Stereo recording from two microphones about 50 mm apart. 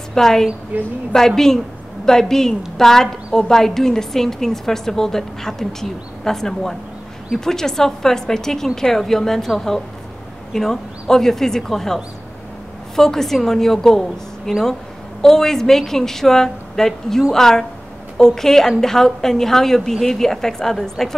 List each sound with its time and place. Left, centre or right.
0.1 s a woman's voice: centre
0.7 s a woman's voice: right
1.1 s a woman's voice: centre
10.5 s a woman's voice: centre